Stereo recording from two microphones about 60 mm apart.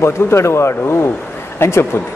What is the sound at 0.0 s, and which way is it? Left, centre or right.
A man's voice, left.